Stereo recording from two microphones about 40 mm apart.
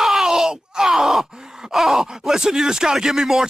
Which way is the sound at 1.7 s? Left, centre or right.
Centre.